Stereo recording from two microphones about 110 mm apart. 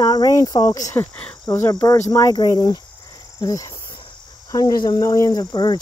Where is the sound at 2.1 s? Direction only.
35° left (ahead or behind).